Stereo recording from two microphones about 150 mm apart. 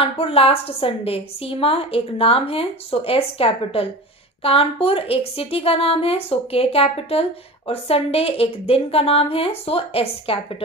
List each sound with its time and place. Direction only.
0.0 s a woman's voice: 40° left (ahead or behind)